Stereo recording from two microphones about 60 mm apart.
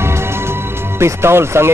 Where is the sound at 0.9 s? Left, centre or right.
Right.